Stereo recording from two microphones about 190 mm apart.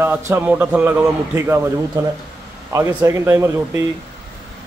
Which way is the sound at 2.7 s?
15° right (ahead or behind).